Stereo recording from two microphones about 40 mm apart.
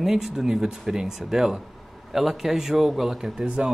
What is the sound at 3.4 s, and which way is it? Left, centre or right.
Speech, right.